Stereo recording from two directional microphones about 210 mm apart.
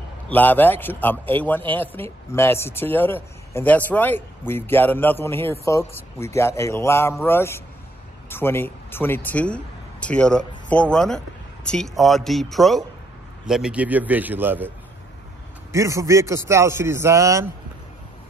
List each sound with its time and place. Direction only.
0.3 s a man's voice: 10° left (ahead or behind); by 14.7 s 10° right (ahead or behind)
15.7 s a man's voice: 15° right (ahead or behind)